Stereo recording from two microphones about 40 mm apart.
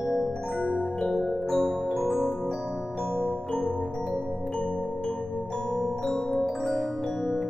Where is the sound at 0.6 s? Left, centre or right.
Left.